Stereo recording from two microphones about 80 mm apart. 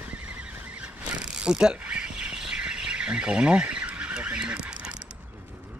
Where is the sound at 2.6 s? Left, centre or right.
Centre.